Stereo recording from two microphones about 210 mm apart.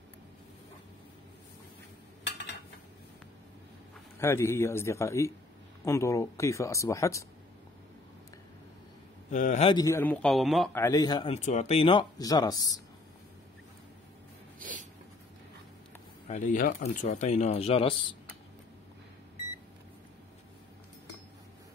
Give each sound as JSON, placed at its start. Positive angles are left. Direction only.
{"t": 4.2, "sound": "speech", "side_deg": 10}
{"t": 9.3, "sound": "speech", "side_deg": 35}
{"t": 9.7, "sound": "a man's voice", "side_deg": 15}
{"t": 10.7, "sound": "speech", "side_deg": 15}
{"t": 14.6, "sound": "a sound", "side_deg": -40}
{"t": 16.3, "sound": "speech", "side_deg": 35}